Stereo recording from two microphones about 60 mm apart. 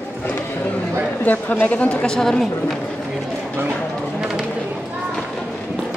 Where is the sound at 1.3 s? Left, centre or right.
Left; by 2.7 s centre.